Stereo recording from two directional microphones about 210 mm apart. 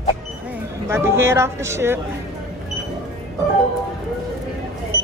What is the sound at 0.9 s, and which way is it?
Speech, 10° right (ahead or behind).